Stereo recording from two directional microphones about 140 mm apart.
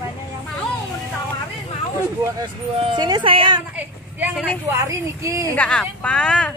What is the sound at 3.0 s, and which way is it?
Speech, 35° right (ahead or behind).